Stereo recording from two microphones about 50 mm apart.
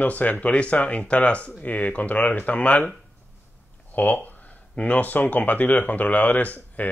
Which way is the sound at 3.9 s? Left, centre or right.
Left.